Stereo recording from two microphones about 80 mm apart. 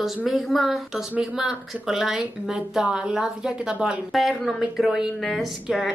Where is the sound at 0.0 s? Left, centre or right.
Centre.